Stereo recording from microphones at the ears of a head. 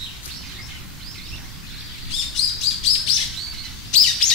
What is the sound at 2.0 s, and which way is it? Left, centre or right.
Bird, left.